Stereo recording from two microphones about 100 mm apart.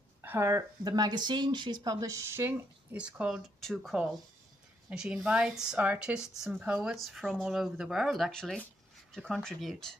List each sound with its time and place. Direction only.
0.2 s a sound: 25° right (ahead or behind)
0.5 s speech: 35° right (ahead or behind)
2.4 s speech: 15° right (ahead or behind)
3.4 s speech: centre (ahead or behind)
7.0 s speech: centre (ahead or behind)